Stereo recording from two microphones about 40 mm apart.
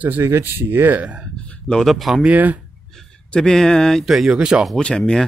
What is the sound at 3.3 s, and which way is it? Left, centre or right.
Speech, centre.